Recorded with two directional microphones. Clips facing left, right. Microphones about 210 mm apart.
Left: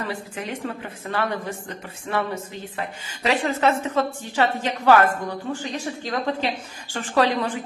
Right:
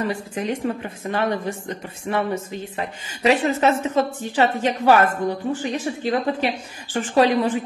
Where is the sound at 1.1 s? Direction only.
15° right (ahead or behind).